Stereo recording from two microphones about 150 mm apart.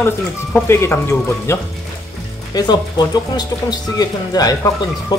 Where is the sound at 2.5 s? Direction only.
30° left (ahead or behind).